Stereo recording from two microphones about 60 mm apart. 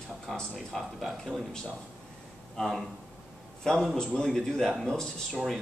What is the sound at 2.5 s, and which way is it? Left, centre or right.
Speech, centre.